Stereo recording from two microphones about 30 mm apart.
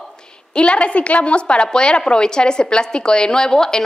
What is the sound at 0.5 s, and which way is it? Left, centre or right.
A woman's voice, left.